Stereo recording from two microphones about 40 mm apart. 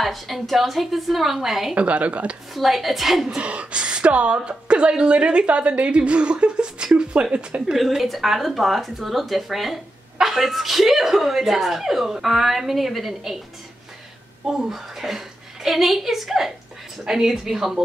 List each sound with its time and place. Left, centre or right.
0.0 s speech: centre
1.8 s a woman's voice: right
2.5 s speech: centre
3.3 s a woman's voice: right
7.7 s speech: centre
14.4 s a woman's voice: centre